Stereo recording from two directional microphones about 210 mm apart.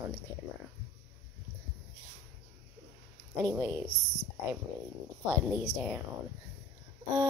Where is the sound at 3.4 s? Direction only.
10° right (ahead or behind).